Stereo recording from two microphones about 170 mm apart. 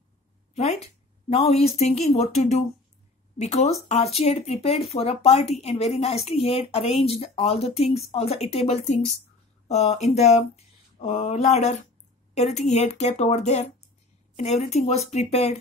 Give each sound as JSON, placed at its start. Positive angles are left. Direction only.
{"t": 0.6, "sound": "speech", "side_deg": 40}